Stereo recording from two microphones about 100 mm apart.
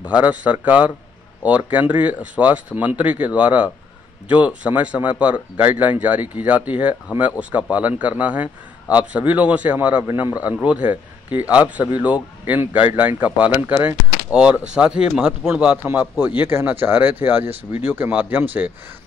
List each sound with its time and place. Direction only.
0.0 s a man's voice: 15° right (ahead or behind)